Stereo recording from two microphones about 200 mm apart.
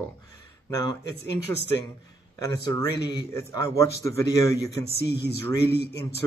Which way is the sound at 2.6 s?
15° left (ahead or behind).